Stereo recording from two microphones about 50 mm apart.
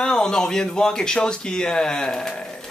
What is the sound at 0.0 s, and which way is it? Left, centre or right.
Speech, centre.